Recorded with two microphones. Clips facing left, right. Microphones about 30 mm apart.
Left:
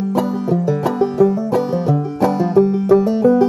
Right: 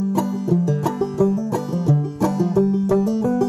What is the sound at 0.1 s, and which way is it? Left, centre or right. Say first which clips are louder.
Music: left 5 dB; left.